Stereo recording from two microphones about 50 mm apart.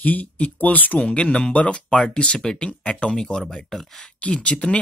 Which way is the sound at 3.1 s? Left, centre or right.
Centre.